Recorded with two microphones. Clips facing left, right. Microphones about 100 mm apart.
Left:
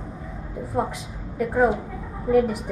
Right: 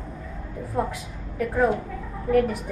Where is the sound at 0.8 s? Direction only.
10° left (ahead or behind).